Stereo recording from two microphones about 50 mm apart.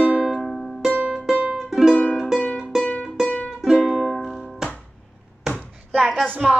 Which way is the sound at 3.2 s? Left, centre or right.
Left.